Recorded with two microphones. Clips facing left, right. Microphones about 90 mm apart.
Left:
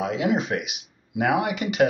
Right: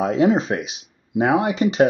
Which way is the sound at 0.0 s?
35° right (ahead or behind).